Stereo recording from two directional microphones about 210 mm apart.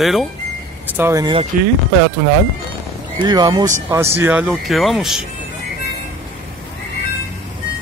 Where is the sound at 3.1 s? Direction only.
20° right (ahead or behind).